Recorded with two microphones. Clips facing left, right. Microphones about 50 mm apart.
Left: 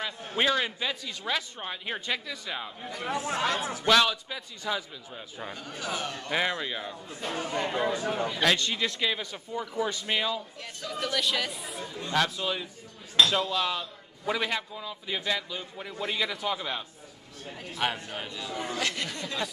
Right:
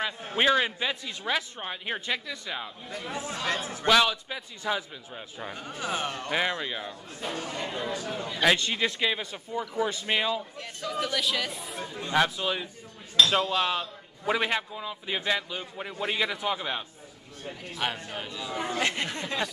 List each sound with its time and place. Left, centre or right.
0.0 s a man's voice: centre
3.3 s speech: left
3.8 s a man's voice: centre; by 6.3 s right
6.3 s a man's voice: centre
7.3 s a man's voice: centre
8.5 s a man's voice: centre
11.8 s a man's voice: right
17.7 s a man's voice: centre
18.4 s a man's voice: right